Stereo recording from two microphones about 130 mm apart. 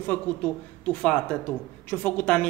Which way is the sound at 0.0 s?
10° left (ahead or behind).